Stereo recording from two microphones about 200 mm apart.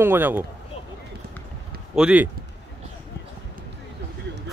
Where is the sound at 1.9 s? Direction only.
5° right (ahead or behind).